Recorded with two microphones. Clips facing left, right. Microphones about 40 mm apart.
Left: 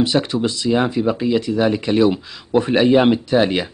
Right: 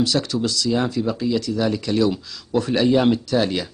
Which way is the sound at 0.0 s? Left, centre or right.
Left.